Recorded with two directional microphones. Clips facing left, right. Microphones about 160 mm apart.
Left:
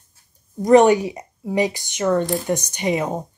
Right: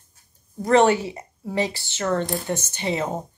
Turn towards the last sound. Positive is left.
turn(degrees=15)  # may be behind; listen again after turning